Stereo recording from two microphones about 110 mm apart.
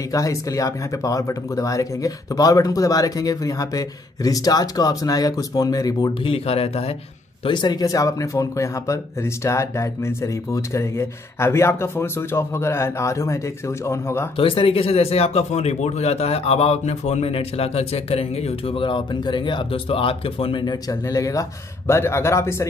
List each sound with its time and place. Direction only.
0.1 s speech: 30° left (ahead or behind)
6.2 s speech: 60° left (ahead or behind)
7.4 s speech: 40° left (ahead or behind); by 14.2 s 25° left (ahead or behind)
14.3 s speech: 55° left (ahead or behind)
20.6 s speech: 30° left (ahead or behind)